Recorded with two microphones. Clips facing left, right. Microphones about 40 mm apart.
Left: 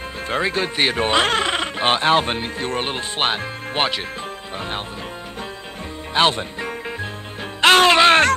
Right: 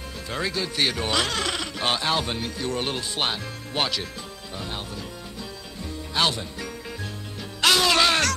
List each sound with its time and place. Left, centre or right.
0.3 s speech: left
6.1 s speech: left
7.6 s music: left